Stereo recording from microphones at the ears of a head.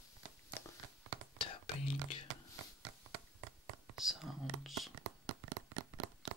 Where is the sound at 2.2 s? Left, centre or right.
Right.